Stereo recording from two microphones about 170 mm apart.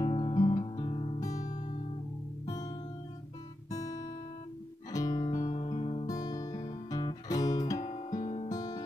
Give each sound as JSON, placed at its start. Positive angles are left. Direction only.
{"t": 0.0, "sound": "music", "side_deg": 30}
{"t": 2.4, "sound": "music", "side_deg": 20}
{"t": 3.7, "sound": "guitar", "side_deg": 20}
{"t": 5.4, "sound": "music", "side_deg": 35}
{"t": 6.1, "sound": "music", "side_deg": 20}
{"t": 8.2, "sound": "music", "side_deg": 35}
{"t": 8.5, "sound": "music", "side_deg": 20}